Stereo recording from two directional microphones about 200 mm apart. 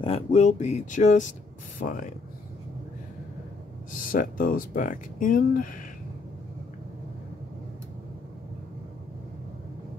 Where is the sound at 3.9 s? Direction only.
40° left (ahead or behind).